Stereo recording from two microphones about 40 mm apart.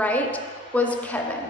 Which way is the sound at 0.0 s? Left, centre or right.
Left.